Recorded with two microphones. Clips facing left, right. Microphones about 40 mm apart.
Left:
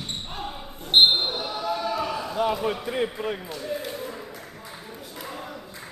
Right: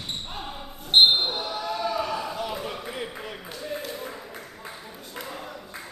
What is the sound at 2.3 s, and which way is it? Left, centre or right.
Basketball bounce, left.